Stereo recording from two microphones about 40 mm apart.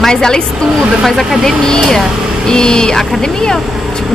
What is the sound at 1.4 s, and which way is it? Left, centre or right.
A woman's voice, centre.